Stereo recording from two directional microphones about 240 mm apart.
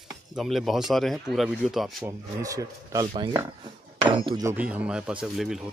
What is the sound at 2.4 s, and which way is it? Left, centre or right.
Speech, centre.